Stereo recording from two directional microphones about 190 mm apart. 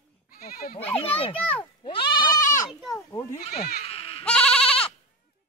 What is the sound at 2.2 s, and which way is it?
Goat, 45° left (ahead or behind).